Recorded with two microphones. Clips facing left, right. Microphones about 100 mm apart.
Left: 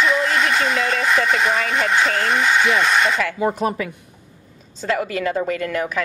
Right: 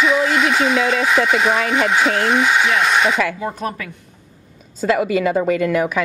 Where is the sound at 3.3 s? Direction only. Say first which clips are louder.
Left 4 dB; 20° left (ahead or behind).